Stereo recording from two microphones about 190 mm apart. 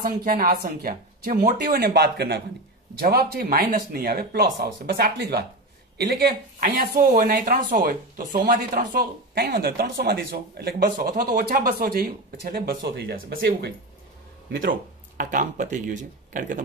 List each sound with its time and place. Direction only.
0.0 s speech: 45° right (ahead or behind)
11.3 s speech: 45° right (ahead or behind)
14.7 s speech: 45° right (ahead or behind)